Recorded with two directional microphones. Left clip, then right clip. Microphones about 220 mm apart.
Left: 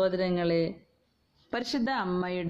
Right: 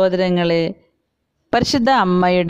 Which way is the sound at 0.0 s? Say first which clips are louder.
Right 11 dB; 45° right (ahead or behind).